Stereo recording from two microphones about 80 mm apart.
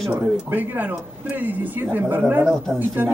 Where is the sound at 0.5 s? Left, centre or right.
Right.